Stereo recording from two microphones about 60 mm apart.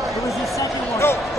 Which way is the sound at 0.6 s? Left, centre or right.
Left.